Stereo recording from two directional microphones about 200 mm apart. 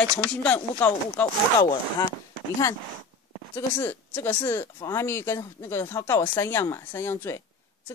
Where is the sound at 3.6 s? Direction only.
10° left (ahead or behind).